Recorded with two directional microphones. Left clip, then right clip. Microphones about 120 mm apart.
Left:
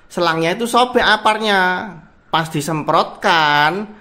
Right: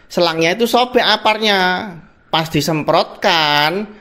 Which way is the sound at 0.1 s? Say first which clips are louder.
Right 2 dB; 30° right (ahead or behind).